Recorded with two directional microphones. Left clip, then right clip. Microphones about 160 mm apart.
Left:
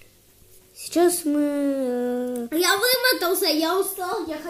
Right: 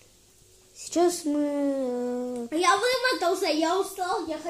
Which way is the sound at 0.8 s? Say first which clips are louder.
Left 4 dB; 15° left (ahead or behind).